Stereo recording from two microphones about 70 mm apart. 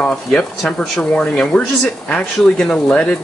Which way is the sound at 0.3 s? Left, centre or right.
Centre.